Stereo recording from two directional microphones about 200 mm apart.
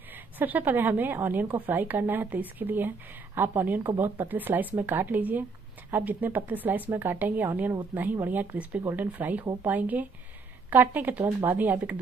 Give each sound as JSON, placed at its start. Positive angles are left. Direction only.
{"t": 0.1, "sound": "a woman's voice", "side_deg": -10}